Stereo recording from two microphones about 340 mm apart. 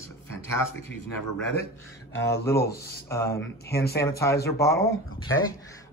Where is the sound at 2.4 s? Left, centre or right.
Centre.